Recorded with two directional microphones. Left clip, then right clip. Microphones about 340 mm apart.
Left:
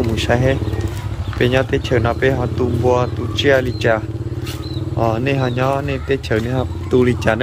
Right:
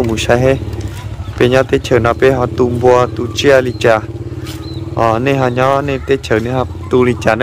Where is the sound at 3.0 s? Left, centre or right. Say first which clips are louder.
Right 6 dB; centre.